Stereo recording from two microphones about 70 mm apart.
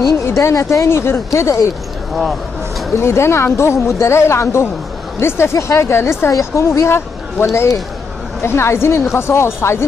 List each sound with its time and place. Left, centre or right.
0.3 s speech: left
0.6 s a woman's voice: left
0.8 s speech: left
3.0 s a woman's voice: left
8.4 s speech: left